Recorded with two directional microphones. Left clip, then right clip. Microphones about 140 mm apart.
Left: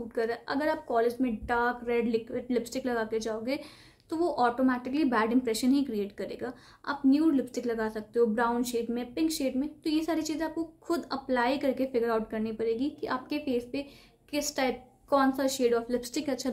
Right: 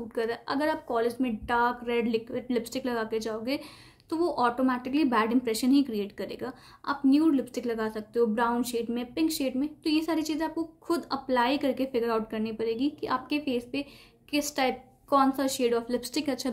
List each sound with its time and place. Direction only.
0.1 s a woman's voice: 30° right (ahead or behind)